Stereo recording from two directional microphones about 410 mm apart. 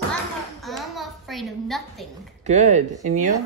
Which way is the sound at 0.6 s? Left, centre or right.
Centre.